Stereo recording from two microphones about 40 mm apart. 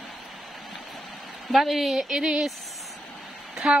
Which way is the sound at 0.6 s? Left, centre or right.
Centre.